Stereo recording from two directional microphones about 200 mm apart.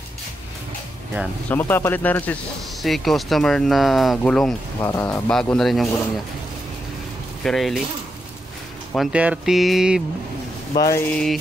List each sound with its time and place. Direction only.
1.5 s speech: 10° left (ahead or behind)
4.7 s speech: 15° left (ahead or behind)
5.3 s speech: 5° left (ahead or behind)
7.4 s speech: centre (ahead or behind)
8.9 s speech: 5° right (ahead or behind)
10.8 s speech: 15° left (ahead or behind)